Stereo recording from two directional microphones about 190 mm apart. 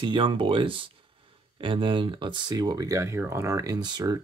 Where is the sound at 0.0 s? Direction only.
25° right (ahead or behind).